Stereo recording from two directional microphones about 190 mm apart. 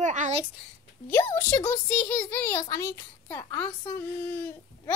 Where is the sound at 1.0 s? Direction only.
10° left (ahead or behind).